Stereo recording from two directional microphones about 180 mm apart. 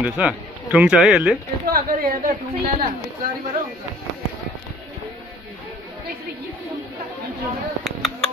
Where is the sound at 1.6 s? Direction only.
55° right (ahead or behind).